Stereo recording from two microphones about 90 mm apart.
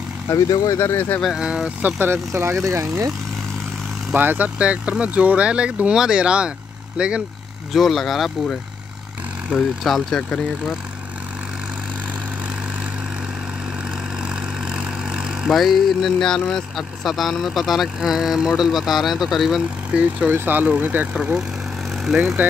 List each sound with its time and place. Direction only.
0.3 s speech: 35° left (ahead or behind)
1.2 s speech: 10° right (ahead or behind); by 2.5 s 25° right (ahead or behind)
2.6 s speech: 35° right (ahead or behind)
4.1 s speech: 20° right (ahead or behind)
7.7 s speech: centre (ahead or behind)
14.3 s speech: 10° right (ahead or behind)